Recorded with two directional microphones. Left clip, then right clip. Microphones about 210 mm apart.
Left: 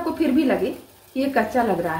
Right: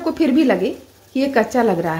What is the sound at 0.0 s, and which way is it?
A woman's voice, 45° right (ahead or behind).